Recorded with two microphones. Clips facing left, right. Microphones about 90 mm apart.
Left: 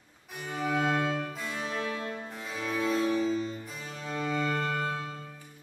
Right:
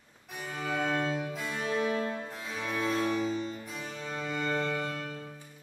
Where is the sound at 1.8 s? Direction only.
15° right (ahead or behind).